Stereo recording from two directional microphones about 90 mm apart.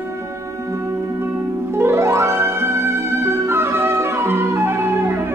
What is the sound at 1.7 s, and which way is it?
Music, 30° right (ahead or behind).